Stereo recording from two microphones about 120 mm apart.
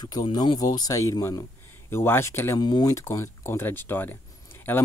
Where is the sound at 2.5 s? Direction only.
35° left (ahead or behind); by 4.8 s 15° left (ahead or behind).